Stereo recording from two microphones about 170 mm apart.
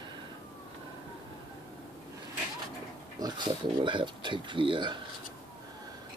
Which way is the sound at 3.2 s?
25° right (ahead or behind).